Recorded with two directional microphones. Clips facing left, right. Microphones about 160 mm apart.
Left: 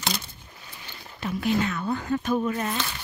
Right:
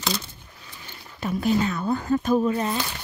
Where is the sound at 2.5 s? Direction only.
25° right (ahead or behind).